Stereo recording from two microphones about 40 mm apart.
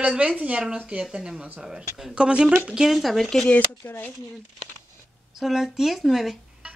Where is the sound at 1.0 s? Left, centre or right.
Centre.